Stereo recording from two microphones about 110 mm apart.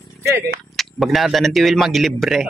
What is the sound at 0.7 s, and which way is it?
A man's voice, centre (ahead or behind).